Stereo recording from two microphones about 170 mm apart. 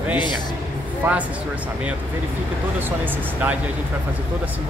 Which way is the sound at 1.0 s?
10° right (ahead or behind).